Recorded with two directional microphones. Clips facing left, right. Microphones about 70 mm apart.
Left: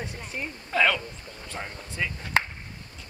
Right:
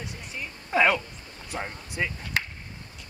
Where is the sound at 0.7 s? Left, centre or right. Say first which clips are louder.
Right 2 dB; centre.